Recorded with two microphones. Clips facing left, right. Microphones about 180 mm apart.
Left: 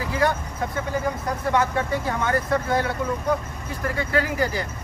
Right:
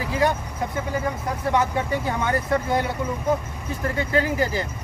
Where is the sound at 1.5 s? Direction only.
15° right (ahead or behind).